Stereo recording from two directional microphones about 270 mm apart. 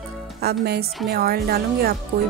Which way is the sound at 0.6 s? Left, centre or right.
Right.